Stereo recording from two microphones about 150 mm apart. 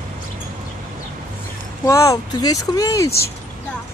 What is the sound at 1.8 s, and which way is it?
Speech, 20° left (ahead or behind).